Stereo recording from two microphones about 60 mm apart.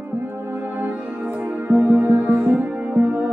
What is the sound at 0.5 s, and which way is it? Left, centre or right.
Music, right.